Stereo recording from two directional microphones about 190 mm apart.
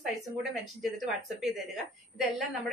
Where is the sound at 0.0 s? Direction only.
Centre (ahead or behind).